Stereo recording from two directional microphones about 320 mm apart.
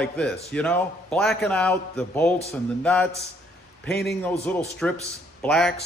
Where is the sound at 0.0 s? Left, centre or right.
Centre.